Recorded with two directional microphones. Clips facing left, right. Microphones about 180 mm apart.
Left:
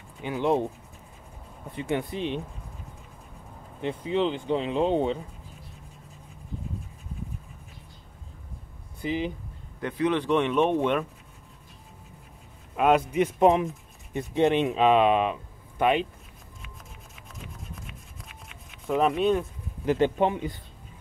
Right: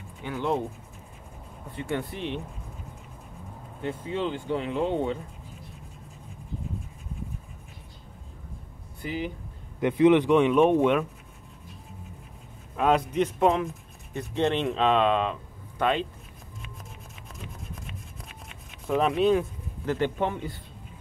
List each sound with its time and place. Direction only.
0.2 s speech: 15° left (ahead or behind)
1.7 s speech: 15° left (ahead or behind)
3.8 s speech: 20° left (ahead or behind)
9.0 s speech: 20° left (ahead or behind)
9.8 s speech: 20° right (ahead or behind)
12.7 s speech: 5° left (ahead or behind)
18.9 s speech: centre (ahead or behind)
19.9 s speech: 15° left (ahead or behind)